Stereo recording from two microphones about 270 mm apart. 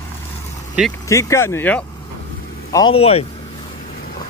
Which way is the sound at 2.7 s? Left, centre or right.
Centre.